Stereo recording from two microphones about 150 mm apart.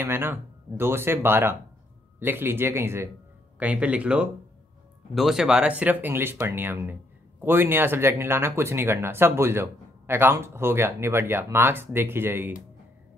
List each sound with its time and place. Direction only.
0.0 s speech: 15° right (ahead or behind)